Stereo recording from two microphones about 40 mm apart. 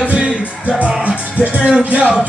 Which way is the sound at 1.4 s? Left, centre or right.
Right.